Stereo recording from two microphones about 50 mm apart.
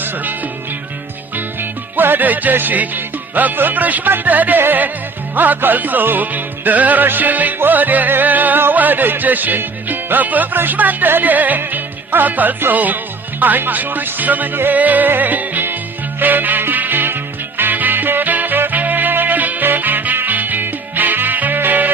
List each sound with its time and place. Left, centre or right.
1.6 s music: right